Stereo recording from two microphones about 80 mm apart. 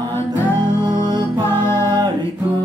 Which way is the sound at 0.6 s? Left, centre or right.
Right.